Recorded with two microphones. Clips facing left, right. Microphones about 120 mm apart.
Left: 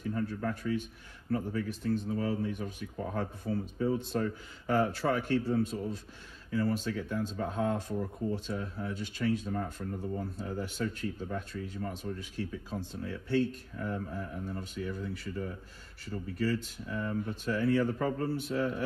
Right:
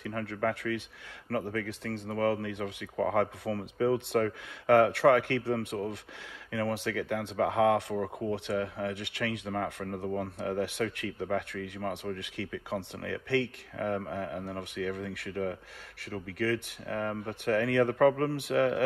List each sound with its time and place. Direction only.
0.0 s speech: 70° right (ahead or behind)